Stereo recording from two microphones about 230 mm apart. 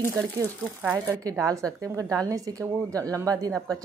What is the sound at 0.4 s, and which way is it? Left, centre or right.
Speech, centre.